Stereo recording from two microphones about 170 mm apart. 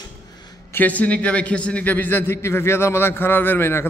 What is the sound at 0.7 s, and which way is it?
A man's voice, 10° left (ahead or behind).